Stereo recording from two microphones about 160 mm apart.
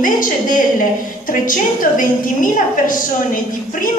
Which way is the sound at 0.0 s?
55° left (ahead or behind).